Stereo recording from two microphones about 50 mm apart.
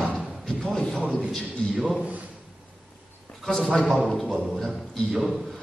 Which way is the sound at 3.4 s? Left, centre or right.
Centre.